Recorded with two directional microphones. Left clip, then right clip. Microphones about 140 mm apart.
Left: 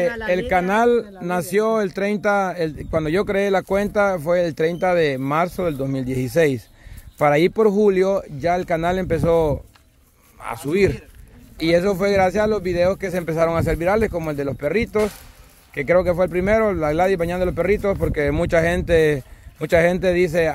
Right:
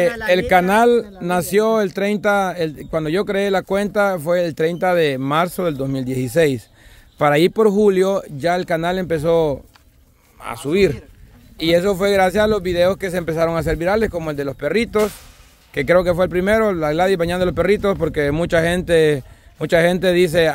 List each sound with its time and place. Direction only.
0.3 s a man's voice: 40° right (ahead or behind)
18.1 s speech: 20° right (ahead or behind)